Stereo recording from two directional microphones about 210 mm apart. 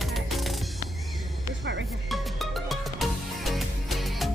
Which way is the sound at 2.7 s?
Centre (ahead or behind).